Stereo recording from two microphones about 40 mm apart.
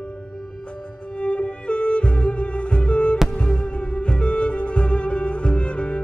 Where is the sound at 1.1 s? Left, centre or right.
Left.